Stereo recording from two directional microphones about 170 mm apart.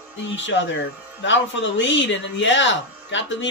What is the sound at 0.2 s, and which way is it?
Speech, 90° left.